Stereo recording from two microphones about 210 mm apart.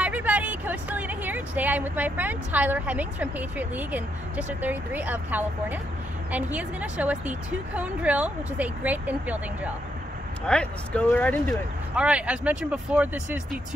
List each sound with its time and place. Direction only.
0.0 s speech: 5° right (ahead or behind)
10.4 s speech: 5° left (ahead or behind)
11.9 s speech: 5° right (ahead or behind)